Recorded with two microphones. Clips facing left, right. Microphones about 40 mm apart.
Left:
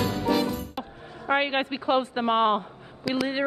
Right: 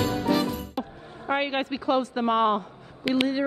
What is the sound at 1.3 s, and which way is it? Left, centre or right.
A woman's voice, left.